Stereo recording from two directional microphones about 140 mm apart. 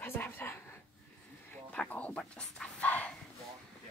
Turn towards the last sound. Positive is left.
turn(degrees=10)  # may be behind; listen again after turning